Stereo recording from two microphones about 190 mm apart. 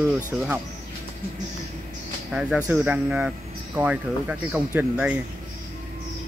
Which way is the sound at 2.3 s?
5° right (ahead or behind).